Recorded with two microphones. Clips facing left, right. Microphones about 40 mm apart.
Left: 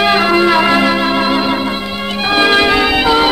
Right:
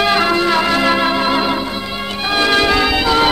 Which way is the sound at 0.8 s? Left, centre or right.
Centre.